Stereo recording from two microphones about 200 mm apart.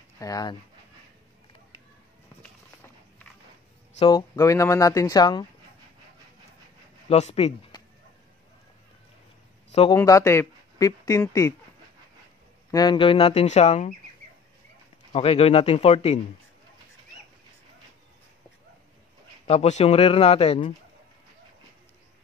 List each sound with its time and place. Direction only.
0.2 s speech: 20° left (ahead or behind)
4.0 s speech: 20° left (ahead or behind)
7.1 s speech: 30° left (ahead or behind)
9.7 s a sound: 30° left (ahead or behind)
9.9 s speech: 15° left (ahead or behind)
12.7 s speech: 25° left (ahead or behind)
15.1 s speech: 30° left (ahead or behind)
19.4 s speech: 30° left (ahead or behind)